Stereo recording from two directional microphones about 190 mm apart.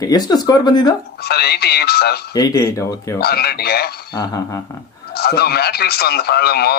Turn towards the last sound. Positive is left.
turn(degrees=55)  # may be behind; listen again after turning